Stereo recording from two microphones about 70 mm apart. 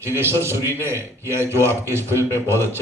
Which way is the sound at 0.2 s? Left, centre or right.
Right.